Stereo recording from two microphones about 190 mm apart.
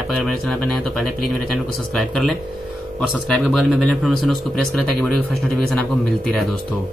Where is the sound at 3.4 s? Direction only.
Centre (ahead or behind).